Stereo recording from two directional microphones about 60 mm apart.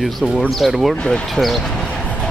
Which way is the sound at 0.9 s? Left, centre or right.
Centre.